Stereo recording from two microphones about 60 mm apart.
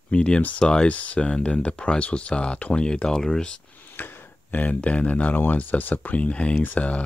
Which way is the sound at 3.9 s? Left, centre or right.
Left.